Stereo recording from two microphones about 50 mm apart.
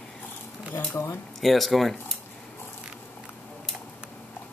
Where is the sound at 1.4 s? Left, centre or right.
Centre.